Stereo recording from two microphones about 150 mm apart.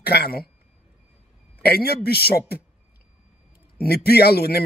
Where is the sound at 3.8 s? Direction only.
90° left.